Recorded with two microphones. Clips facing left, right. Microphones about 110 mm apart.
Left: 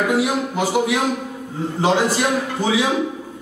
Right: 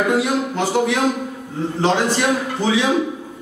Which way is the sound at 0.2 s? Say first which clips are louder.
Even; 10° left (ahead or behind).